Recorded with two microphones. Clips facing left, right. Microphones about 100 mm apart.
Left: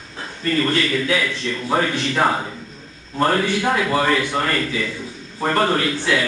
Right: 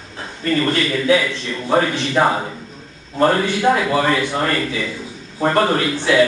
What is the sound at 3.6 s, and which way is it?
A man's voice, 15° right (ahead or behind).